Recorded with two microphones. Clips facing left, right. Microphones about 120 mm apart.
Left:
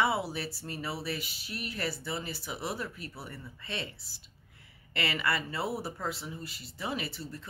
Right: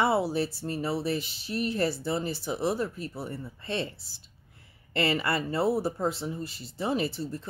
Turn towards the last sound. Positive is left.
turn(degrees=-30)  # may be behind; listen again after turning